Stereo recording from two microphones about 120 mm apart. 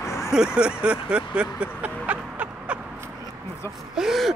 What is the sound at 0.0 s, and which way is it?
Vehicle, 25° left (ahead or behind).